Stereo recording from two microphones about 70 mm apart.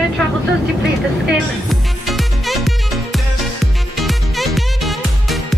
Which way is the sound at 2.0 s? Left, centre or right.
Centre.